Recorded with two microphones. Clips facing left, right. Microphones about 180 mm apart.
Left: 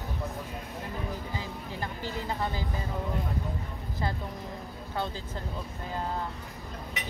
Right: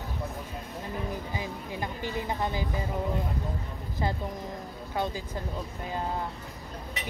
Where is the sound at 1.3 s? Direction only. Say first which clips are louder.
Right 2 dB; 15° right (ahead or behind).